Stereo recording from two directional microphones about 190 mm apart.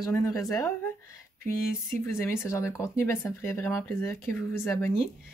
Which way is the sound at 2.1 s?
15° left (ahead or behind).